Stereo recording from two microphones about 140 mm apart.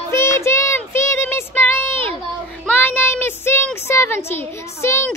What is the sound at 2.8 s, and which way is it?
Speech, 15° left (ahead or behind).